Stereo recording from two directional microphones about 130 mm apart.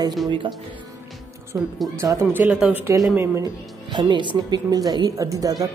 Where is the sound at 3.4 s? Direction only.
35° right (ahead or behind).